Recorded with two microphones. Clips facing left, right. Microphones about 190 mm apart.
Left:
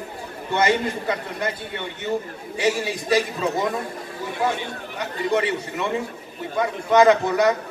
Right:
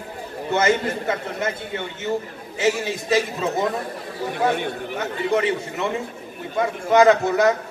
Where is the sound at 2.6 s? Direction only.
20° right (ahead or behind).